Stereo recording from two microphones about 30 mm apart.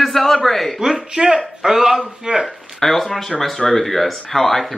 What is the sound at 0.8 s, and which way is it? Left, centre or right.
Speech, right.